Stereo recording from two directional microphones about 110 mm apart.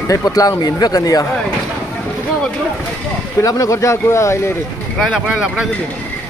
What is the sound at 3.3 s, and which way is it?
Speech, 30° left (ahead or behind).